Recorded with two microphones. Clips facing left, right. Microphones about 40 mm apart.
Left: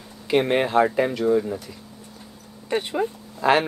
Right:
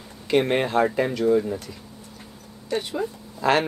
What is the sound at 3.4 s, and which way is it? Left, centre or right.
Speech, centre.